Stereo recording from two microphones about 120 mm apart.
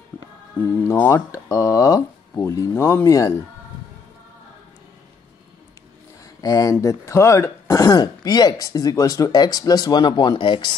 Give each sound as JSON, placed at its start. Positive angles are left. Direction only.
{"t": 0.1, "sound": "music", "side_deg": 15}
{"t": 0.6, "sound": "speech", "side_deg": 20}
{"t": 6.4, "sound": "speech", "side_deg": 30}